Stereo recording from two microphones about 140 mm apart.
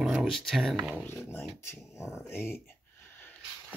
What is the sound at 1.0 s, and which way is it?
Speech, 15° left (ahead or behind).